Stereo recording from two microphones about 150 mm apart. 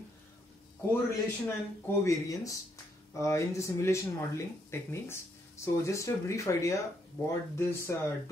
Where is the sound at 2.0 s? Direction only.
20° left (ahead or behind).